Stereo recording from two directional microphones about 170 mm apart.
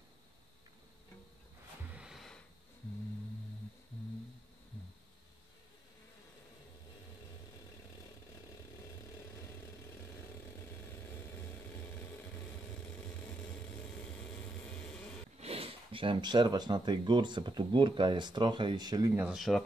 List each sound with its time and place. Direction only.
1.9 s snort: 5° right (ahead or behind)
14.7 s a sound: 5° left (ahead or behind)
15.4 s speech: 35° right (ahead or behind)
19.2 s speech: centre (ahead or behind)